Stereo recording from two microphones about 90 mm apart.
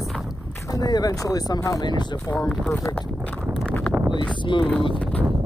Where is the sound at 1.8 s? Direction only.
55° left (ahead or behind).